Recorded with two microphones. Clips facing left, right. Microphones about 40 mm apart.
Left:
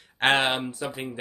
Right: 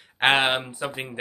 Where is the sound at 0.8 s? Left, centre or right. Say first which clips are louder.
Right 2 dB; right.